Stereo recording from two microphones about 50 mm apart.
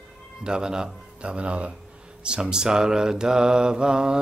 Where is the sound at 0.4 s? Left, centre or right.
Centre.